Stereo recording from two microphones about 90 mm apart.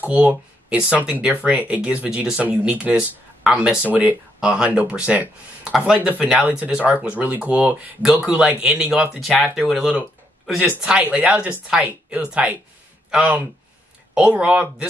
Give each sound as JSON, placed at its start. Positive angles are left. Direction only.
{"t": 0.0, "sound": "speech", "side_deg": -15}
{"t": 10.8, "sound": "speech", "side_deg": -15}